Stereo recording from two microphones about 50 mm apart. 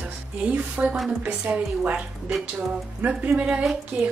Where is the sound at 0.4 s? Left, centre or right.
Right.